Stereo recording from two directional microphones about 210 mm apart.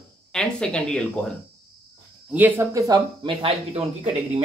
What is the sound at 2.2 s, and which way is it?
Speech, 10° right (ahead or behind).